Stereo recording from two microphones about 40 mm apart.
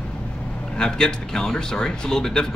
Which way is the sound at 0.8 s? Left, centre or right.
Centre.